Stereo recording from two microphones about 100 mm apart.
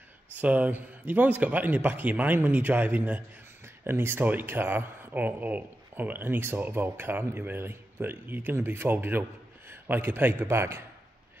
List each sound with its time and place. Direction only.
0.4 s a man's voice: 15° right (ahead or behind)